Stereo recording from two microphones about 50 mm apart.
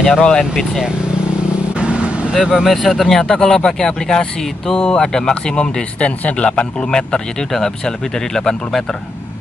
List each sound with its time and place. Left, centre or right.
0.2 s speech: centre
1.8 s vehicle: right
2.3 s speech: centre
3.2 s a man's voice: centre